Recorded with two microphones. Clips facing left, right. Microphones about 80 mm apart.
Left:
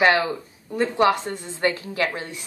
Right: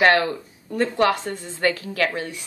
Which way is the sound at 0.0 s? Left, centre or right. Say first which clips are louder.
Right 1 dB; centre.